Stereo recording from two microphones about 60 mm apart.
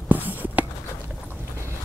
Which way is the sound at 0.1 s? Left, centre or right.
Right.